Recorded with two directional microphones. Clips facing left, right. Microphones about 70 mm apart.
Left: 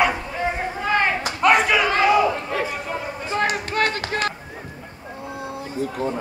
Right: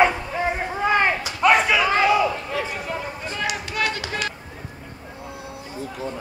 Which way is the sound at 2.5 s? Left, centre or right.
Left.